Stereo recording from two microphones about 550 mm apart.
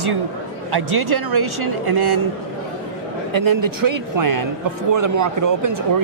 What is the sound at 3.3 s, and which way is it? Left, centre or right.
Speech, right.